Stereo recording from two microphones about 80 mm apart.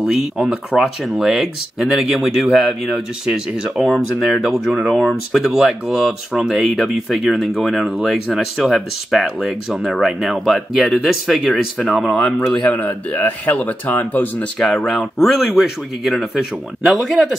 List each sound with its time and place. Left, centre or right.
0.0 s speech: centre
12.7 s speech: left
14.9 s speech: centre